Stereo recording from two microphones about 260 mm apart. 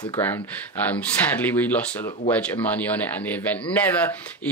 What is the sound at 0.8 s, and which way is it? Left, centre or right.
Speech, centre.